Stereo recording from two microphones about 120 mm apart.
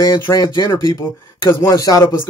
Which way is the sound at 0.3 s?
30° left (ahead or behind).